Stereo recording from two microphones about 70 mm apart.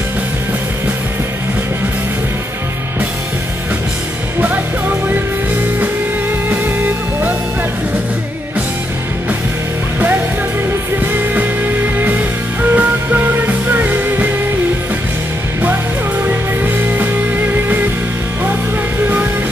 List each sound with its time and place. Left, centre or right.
11.3 s music: right